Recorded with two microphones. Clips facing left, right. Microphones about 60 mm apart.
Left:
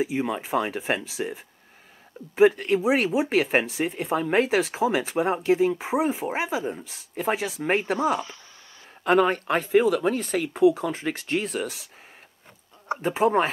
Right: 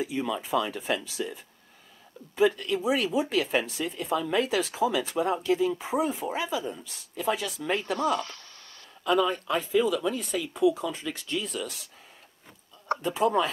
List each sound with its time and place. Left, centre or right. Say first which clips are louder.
0.0 s speech: left 4 dB; left
4.8 s speech: left 3 dB; left
5.8 s speech: left 3 dB; left
6.0 s speech: left 4 dB; left
6.4 s speech: left 3 dB; left
8.0 s speech: left 2 dB; centre
9.0 s speech: left 4 dB; left
13.0 s speech: left 4 dB; left